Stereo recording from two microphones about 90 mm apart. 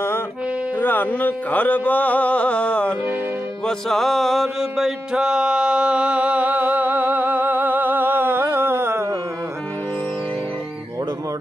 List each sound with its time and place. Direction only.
0.7 s music: 20° left (ahead or behind)
3.6 s mantra: 5° left (ahead or behind); by 9.1 s 25° right (ahead or behind)